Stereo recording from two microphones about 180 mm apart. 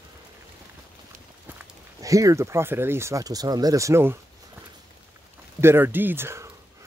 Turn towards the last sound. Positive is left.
turn(degrees=-15)  # may be behind; listen again after turning